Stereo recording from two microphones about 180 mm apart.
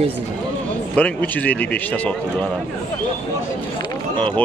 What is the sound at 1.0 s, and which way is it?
A man's voice, 10° left (ahead or behind).